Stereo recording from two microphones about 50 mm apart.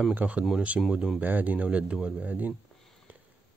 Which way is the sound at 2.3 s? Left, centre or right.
Right.